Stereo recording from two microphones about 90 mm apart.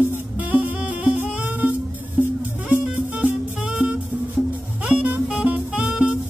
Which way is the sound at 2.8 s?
15° right (ahead or behind).